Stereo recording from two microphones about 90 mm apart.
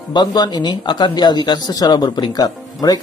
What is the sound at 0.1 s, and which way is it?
Speech, 55° left (ahead or behind).